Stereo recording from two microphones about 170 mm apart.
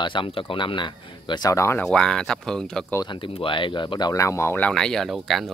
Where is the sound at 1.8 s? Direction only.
5° left (ahead or behind).